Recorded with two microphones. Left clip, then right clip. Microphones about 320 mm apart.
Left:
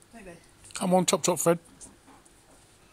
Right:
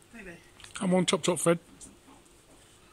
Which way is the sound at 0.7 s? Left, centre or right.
Centre.